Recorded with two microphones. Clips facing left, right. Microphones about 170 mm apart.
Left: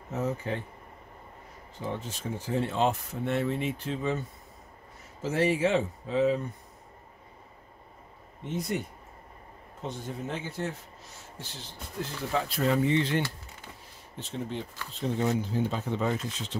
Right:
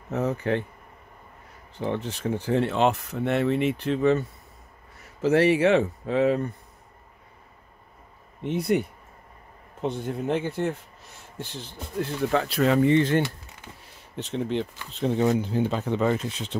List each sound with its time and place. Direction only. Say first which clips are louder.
0.1 s speech: right 6 dB; 65° right (ahead or behind)
1.8 s speech: right 7 dB; 70° right (ahead or behind)
5.2 s speech: right 7 dB; 70° right (ahead or behind)
8.5 s speech: right 8 dB; 65° right (ahead or behind)
12.0 s speech: right 6 dB; 65° right (ahead or behind)
14.1 s speech: right 8 dB; 75° right (ahead or behind)